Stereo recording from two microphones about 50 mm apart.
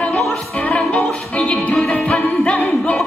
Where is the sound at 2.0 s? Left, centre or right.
Left.